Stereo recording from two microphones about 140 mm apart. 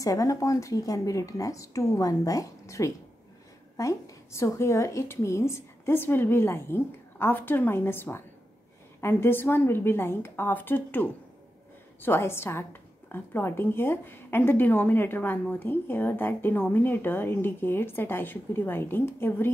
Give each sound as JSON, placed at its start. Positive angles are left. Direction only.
{"t": 0.0, "sound": "a woman's voice", "side_deg": 25}